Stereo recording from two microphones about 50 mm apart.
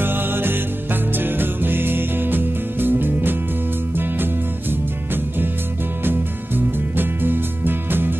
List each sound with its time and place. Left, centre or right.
0.0 s music: right